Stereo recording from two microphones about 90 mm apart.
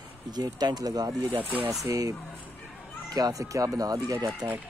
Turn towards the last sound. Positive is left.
turn(degrees=-50)  # may be behind; listen again after turning